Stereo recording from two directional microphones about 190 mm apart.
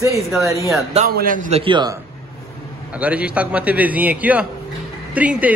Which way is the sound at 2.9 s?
5° right (ahead or behind).